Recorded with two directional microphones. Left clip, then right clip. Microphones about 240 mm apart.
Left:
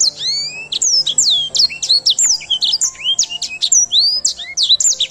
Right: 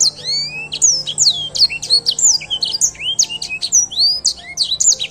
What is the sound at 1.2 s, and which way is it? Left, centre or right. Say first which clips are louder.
Music: right 4 dB; centre.